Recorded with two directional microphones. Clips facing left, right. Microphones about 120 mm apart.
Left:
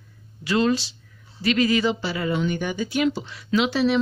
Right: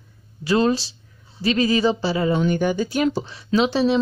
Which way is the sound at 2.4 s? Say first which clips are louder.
Right 5 dB; 45° right (ahead or behind).